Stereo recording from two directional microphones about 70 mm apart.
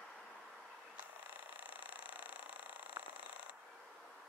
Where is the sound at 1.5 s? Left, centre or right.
Right.